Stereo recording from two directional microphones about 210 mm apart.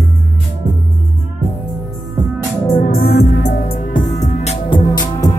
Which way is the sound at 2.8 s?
45° left (ahead or behind).